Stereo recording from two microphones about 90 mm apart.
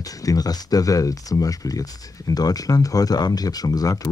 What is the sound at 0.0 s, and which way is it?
Speech, 40° left (ahead or behind).